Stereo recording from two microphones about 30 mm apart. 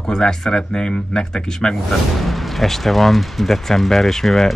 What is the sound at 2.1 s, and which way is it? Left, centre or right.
Speech, centre.